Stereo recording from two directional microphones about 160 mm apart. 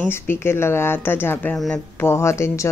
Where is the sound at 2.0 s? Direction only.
15° left (ahead or behind).